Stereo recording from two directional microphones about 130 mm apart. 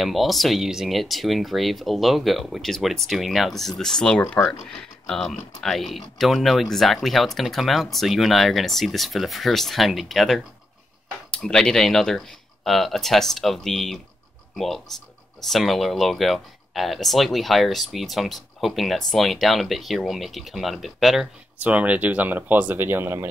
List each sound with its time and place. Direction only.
0.0 s speech: centre (ahead or behind)
4.2 s speech: 15° left (ahead or behind); by 23.2 s 15° right (ahead or behind)